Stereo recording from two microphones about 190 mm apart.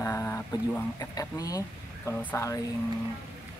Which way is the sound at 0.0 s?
15° left (ahead or behind).